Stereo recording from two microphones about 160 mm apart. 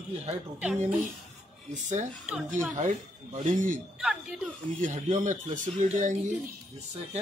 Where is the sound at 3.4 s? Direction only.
50° right (ahead or behind).